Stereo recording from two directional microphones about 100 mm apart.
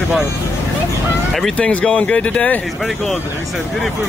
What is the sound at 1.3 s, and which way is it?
Speech, 5° left (ahead or behind).